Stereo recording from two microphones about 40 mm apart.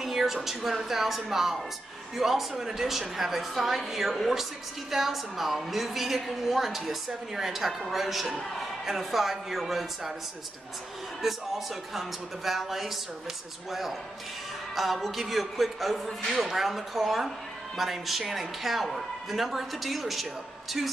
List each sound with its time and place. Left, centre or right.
0.0 s a woman's voice: centre
11.2 s a man's voice: centre